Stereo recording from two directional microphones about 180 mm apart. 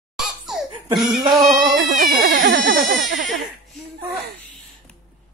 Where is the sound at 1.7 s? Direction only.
50° right (ahead or behind).